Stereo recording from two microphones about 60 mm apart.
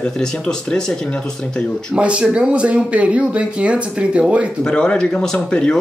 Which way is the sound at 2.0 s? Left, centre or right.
Centre.